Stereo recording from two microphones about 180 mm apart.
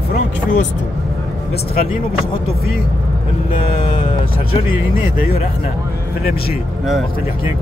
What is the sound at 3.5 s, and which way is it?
Vehicle, 30° left (ahead or behind).